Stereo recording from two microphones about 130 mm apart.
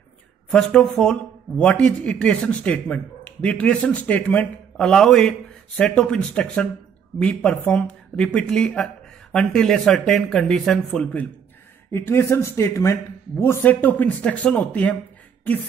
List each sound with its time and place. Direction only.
0.5 s speech: 5° left (ahead or behind)
11.9 s speech: 20° left (ahead or behind)